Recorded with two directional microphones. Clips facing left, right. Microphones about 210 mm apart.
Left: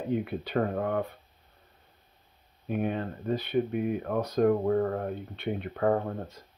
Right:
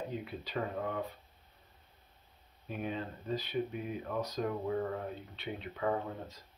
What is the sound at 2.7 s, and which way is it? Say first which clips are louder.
Speech: left 8 dB; 60° left (ahead or behind).